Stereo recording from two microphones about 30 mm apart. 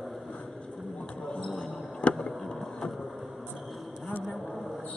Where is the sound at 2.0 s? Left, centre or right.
Left.